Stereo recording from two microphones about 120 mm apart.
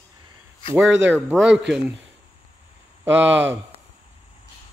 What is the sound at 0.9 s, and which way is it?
Speech, 20° right (ahead or behind).